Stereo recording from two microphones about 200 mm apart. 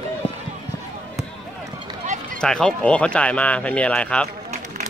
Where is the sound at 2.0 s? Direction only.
35° right (ahead or behind).